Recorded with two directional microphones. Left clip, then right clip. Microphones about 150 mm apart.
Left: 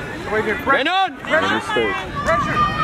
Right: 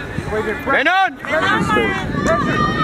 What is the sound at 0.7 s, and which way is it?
Speech, 30° right (ahead or behind).